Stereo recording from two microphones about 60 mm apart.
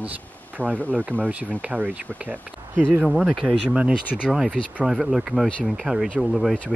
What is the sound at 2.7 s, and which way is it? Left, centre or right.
Speech, right.